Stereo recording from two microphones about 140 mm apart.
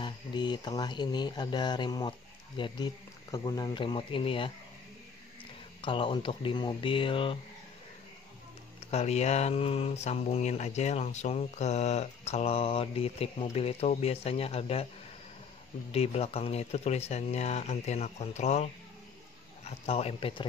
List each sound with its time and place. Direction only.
0.0 s speech: 30° left (ahead or behind)
5.8 s speech: 40° left (ahead or behind)
8.9 s speech: 50° left (ahead or behind)
15.9 s speech: 50° left (ahead or behind)